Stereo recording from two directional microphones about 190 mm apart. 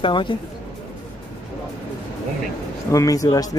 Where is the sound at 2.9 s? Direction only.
15° left (ahead or behind).